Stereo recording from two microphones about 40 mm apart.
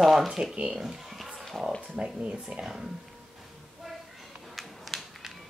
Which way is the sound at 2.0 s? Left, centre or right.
Right.